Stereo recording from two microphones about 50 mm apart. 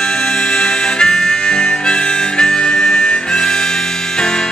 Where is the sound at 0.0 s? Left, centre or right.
Centre.